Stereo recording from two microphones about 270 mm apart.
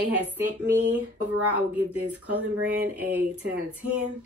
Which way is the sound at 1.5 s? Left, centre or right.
Centre.